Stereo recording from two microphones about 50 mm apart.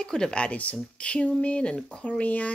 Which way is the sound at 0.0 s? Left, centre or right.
Centre.